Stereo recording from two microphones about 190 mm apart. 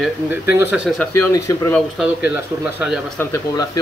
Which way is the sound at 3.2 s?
15° left (ahead or behind).